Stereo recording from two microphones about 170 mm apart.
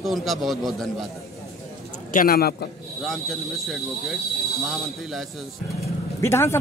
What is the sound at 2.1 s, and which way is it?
Speech, 60° left (ahead or behind).